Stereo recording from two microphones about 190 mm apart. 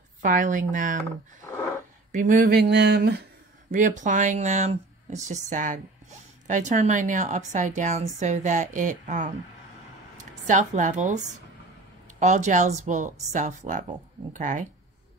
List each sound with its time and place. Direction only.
0.2 s speech: 45° right (ahead or behind)
2.1 s a sound: 45° right (ahead or behind); by 3.2 s 60° right (ahead or behind)
3.7 s a woman's voice: 40° right (ahead or behind)